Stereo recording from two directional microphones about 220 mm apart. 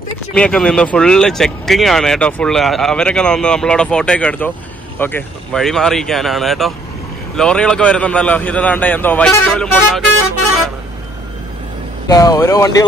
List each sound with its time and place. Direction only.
0.3 s speech: 5° left (ahead or behind)
12.1 s speech: 15° left (ahead or behind)